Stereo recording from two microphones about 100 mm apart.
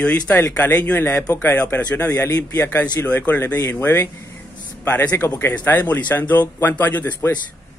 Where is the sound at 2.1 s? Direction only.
30° left (ahead or behind).